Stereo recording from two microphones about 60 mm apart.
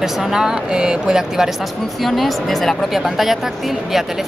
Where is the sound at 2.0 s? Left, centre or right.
Centre.